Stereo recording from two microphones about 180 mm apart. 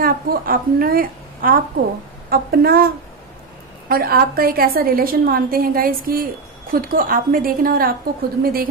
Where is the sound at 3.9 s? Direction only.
55° right (ahead or behind).